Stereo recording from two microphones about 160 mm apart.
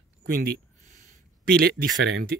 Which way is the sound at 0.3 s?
75° right (ahead or behind).